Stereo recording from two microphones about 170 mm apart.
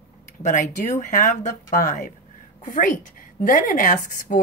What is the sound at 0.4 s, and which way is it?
Speech, 45° left (ahead or behind).